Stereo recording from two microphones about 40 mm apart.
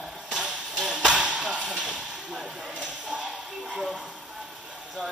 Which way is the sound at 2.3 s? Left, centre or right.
Centre.